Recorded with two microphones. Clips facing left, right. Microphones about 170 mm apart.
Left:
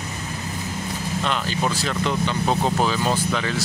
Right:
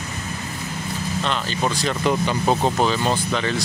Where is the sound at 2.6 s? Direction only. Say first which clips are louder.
Right 1 dB; 5° left (ahead or behind).